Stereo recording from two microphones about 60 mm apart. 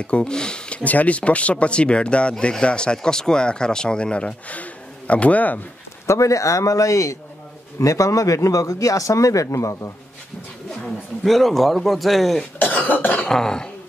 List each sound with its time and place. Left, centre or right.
0.0 s speech: centre
6.0 s speech: left
11.2 s a man's voice: centre
12.5 s cough: left
13.3 s speech: centre